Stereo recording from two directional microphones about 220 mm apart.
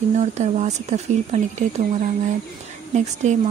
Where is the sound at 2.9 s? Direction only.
30° right (ahead or behind).